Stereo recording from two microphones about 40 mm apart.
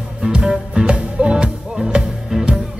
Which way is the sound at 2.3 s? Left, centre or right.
Centre.